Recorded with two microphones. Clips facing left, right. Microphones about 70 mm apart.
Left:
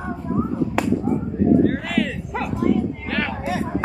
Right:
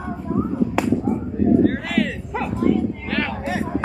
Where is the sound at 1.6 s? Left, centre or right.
Centre.